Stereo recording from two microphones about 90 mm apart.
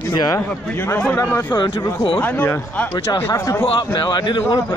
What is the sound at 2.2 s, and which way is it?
Speech, 20° left (ahead or behind).